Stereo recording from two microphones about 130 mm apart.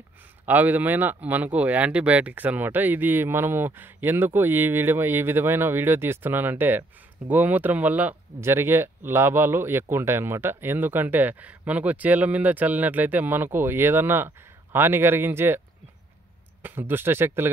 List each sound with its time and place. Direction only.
0.5 s speech: 15° right (ahead or behind)
16.6 s speech: 15° right (ahead or behind)